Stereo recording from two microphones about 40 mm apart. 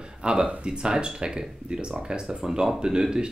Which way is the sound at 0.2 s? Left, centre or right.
Right.